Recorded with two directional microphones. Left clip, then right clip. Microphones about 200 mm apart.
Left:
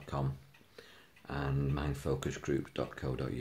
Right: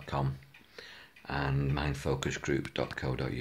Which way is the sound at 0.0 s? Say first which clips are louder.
Right 4 dB; centre (ahead or behind).